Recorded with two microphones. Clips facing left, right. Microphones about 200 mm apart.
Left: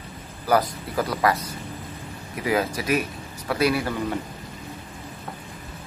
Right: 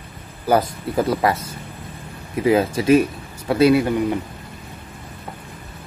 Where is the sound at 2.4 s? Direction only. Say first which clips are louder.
Right 7 dB; 25° right (ahead or behind).